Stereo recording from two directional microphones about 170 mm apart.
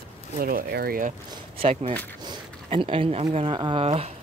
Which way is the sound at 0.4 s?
60° right (ahead or behind).